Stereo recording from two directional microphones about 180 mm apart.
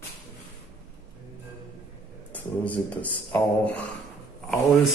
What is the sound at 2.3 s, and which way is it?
Speech, 10° left (ahead or behind).